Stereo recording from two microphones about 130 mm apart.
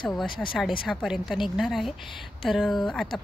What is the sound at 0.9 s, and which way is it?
Speech, centre (ahead or behind).